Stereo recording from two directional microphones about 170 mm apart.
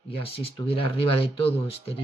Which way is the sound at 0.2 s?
35° left (ahead or behind).